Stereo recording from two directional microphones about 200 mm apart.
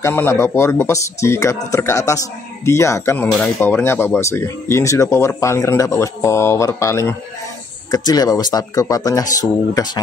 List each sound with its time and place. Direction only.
0.0 s speech: 10° left (ahead or behind)